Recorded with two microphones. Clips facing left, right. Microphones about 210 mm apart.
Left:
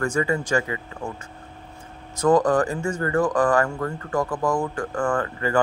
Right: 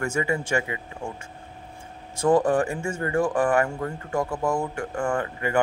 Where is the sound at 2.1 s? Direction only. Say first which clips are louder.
Left 2 dB; 30° right (ahead or behind).